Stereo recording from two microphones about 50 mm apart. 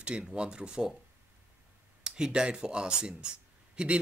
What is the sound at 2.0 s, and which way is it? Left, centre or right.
Speech, centre.